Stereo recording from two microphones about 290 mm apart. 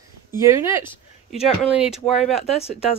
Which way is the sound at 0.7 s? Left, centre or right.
Centre.